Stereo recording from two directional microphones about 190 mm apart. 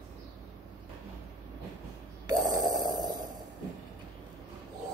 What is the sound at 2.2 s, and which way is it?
Snoring, 20° right (ahead or behind).